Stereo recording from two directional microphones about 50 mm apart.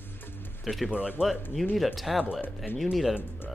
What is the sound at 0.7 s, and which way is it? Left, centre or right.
Speech, centre.